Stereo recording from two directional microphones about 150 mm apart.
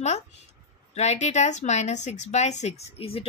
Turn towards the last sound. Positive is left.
turn(degrees=40)  # may be behind; listen again after turning